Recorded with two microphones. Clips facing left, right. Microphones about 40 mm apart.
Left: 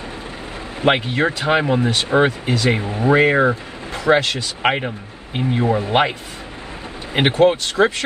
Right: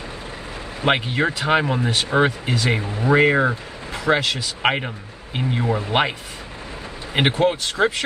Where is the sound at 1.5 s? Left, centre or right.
Left.